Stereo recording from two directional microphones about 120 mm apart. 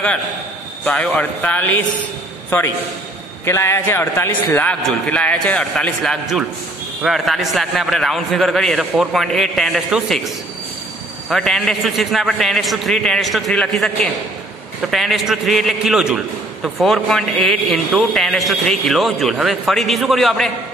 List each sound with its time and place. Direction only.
0.8 s a man's voice: 10° left (ahead or behind)
3.4 s a man's voice: 20° left (ahead or behind); by 20.5 s centre (ahead or behind)